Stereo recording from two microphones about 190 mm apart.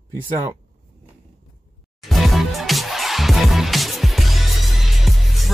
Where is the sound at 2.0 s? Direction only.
Centre (ahead or behind).